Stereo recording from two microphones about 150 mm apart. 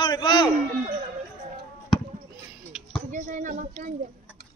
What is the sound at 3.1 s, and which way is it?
Speech, 60° right (ahead or behind).